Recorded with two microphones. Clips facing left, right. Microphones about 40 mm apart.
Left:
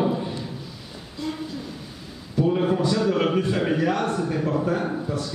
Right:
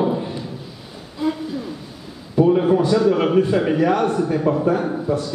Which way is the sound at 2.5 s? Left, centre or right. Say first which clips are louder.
Right 6 dB; centre.